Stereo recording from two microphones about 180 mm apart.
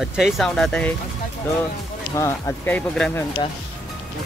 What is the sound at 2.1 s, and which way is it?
Speech, 15° left (ahead or behind).